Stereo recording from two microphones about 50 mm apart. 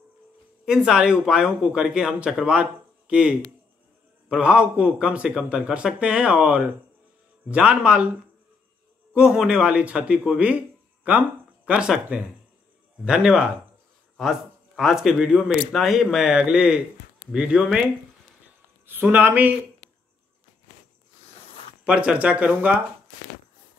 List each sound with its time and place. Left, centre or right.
0.7 s a man's voice: centre
9.1 s a man's voice: centre
11.1 s a sound: right
12.1 s a man's voice: right
14.8 s a man's voice: centre
18.9 s speech: right
21.8 s a man's voice: right